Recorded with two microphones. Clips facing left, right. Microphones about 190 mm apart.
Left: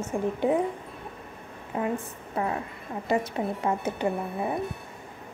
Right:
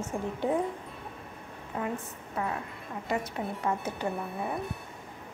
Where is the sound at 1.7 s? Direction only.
25° left (ahead or behind).